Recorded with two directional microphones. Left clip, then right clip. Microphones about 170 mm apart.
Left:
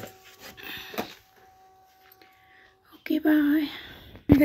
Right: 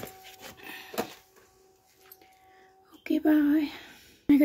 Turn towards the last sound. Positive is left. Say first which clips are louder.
# left 2 dB
turn(degrees=-5)  # may be behind; listen again after turning